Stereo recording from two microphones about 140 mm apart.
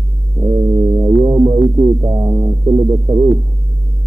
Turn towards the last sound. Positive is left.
turn(degrees=-25)  # may be behind; listen again after turning